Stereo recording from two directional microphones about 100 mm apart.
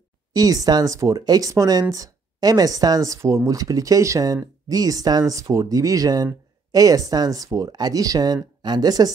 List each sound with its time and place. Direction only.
0.3 s speech: 40° right (ahead or behind)